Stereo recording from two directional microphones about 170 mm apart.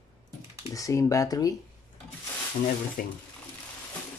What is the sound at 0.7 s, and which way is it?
Speech, 20° left (ahead or behind).